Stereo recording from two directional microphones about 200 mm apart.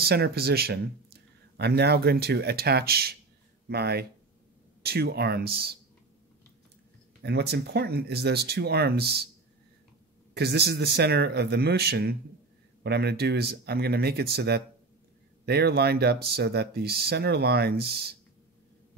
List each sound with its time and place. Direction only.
0.0 s speech: 50° right (ahead or behind)
7.2 s speech: 55° right (ahead or behind)
10.3 s speech: 55° right (ahead or behind)